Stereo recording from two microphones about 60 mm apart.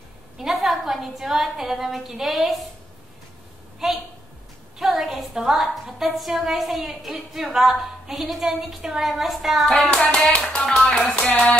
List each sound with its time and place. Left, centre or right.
0.4 s a woman's voice: centre
3.8 s a woman's voice: centre
9.8 s hands: centre
10.4 s a woman's voice: centre